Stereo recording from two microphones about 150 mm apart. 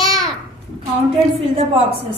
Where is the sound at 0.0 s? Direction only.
25° right (ahead or behind).